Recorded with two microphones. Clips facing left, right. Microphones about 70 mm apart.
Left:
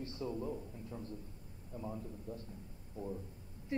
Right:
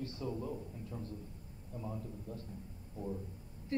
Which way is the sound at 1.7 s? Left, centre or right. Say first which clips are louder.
Even; centre.